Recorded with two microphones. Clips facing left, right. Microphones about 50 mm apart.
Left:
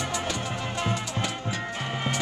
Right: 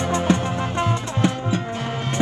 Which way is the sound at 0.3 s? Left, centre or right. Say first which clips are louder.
Right 9 dB; right.